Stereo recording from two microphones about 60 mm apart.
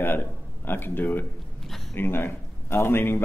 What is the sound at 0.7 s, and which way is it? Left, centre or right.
Speech, left.